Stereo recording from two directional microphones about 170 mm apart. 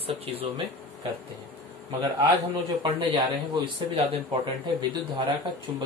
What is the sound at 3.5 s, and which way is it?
Speech, 30° right (ahead or behind).